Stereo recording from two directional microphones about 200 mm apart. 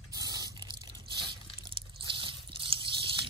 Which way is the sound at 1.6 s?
25° right (ahead or behind).